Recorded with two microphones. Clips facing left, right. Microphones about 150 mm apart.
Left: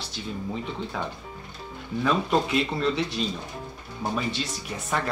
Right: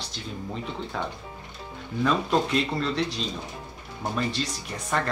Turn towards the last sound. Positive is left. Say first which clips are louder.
# even
turn(degrees=5)  # may be behind; listen again after turning